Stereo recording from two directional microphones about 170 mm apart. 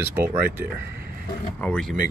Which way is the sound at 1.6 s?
5° left (ahead or behind).